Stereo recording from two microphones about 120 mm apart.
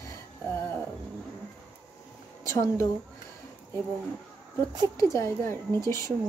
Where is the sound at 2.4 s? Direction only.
25° left (ahead or behind).